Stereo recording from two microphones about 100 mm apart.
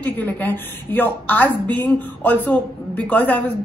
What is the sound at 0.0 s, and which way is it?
A woman's voice, 15° left (ahead or behind).